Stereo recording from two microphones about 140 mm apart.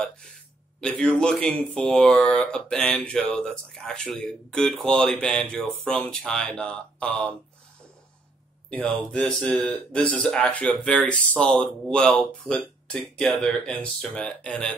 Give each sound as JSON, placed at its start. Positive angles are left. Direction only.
{"t": 0.7, "sound": "speech", "side_deg": 10}
{"t": 8.6, "sound": "speech", "side_deg": 10}